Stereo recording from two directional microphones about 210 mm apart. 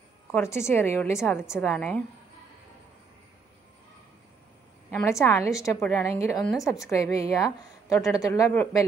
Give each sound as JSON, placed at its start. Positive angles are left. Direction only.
{"t": 0.3, "sound": "a woman's voice", "side_deg": 10}
{"t": 4.9, "sound": "a woman's voice", "side_deg": 10}